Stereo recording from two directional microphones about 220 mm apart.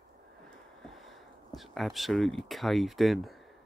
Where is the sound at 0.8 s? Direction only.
Centre (ahead or behind).